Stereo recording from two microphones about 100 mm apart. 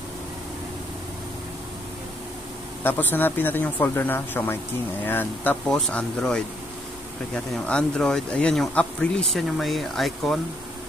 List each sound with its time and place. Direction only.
2.8 s speech: 20° left (ahead or behind)
5.7 s speech: 5° left (ahead or behind)